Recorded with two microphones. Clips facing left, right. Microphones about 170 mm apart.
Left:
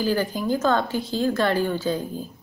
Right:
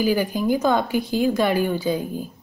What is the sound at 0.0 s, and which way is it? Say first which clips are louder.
A woman's voice: right 3 dB; 10° right (ahead or behind).